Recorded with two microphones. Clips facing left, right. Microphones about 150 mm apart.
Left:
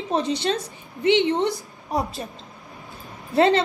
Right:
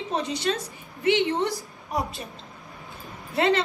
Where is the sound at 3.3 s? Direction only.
35° left (ahead or behind).